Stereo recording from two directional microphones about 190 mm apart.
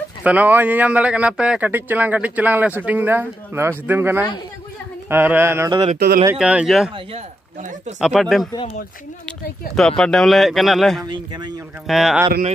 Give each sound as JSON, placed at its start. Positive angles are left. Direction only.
{"t": 0.2, "sound": "speech", "side_deg": -10}
{"t": 5.7, "sound": "speech", "side_deg": -30}
{"t": 6.3, "sound": "speech", "side_deg": -5}
{"t": 8.0, "sound": "speech", "side_deg": 0}
{"t": 9.8, "sound": "speech", "side_deg": 5}
{"t": 11.1, "sound": "speech", "side_deg": -25}
{"t": 11.9, "sound": "speech", "side_deg": 0}